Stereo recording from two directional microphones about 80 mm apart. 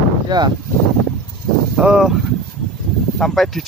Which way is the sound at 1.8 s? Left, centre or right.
Right.